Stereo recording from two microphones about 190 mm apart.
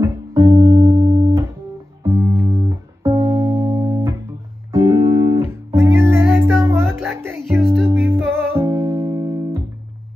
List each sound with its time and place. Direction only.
0.0 s music: 15° right (ahead or behind)